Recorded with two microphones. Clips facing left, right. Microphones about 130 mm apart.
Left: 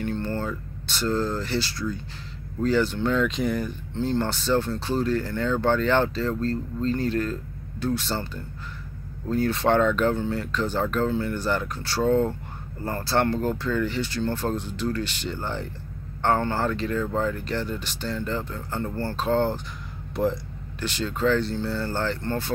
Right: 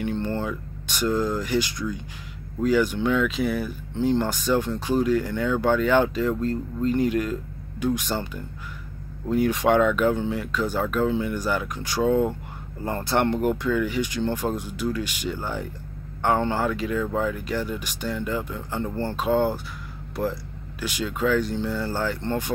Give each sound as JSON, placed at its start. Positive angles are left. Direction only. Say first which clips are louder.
{"t": 0.0, "sound": "speech", "louder": "right 1 dB", "side_deg": -15}
{"t": 20.2, "sound": "speech", "louder": "left 3 dB", "side_deg": 0}
{"t": 20.8, "sound": "speech", "louder": "left 1 dB", "side_deg": -10}